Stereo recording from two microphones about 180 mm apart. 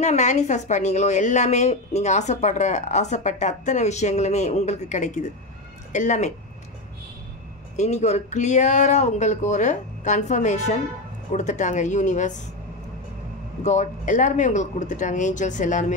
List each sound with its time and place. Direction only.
0.0 s a woman's voice: 40° left (ahead or behind)
7.7 s a woman's voice: 40° left (ahead or behind)
13.6 s speech: 40° left (ahead or behind)